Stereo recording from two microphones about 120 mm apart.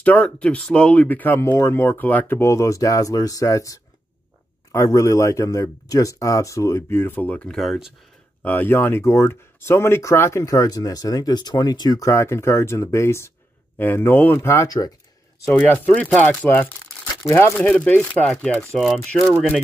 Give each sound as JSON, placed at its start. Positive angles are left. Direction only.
{"t": 0.0, "sound": "speech", "side_deg": 10}
{"t": 8.4, "sound": "speech", "side_deg": 15}
{"t": 15.4, "sound": "speech", "side_deg": 15}
{"t": 17.6, "sound": "speech", "side_deg": 10}